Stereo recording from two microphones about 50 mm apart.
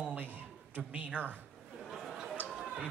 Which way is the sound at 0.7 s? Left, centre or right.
Right.